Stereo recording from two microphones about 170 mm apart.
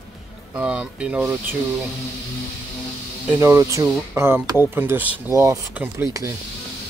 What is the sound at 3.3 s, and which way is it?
Speech, 15° right (ahead or behind).